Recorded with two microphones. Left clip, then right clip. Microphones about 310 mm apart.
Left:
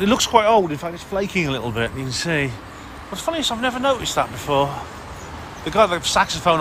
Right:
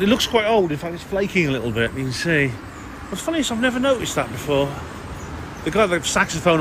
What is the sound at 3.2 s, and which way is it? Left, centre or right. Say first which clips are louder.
Speech: even; centre.